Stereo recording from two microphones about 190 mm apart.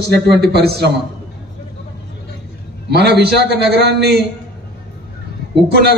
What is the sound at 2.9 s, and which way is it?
A man's voice, 60° right (ahead or behind).